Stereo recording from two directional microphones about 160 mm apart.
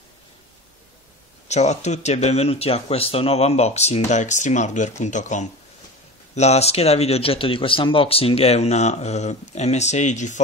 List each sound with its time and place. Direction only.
1.5 s a man's voice: 45° left (ahead or behind)